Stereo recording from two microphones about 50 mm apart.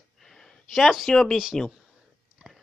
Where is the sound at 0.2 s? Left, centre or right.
Centre.